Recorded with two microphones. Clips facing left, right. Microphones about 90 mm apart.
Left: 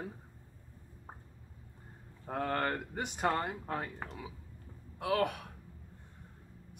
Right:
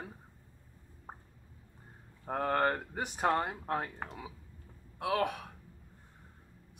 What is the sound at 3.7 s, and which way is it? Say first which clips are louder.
Speech: right 3 dB; 15° right (ahead or behind).